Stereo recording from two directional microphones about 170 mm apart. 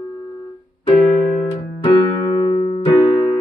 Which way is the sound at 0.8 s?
35° left (ahead or behind).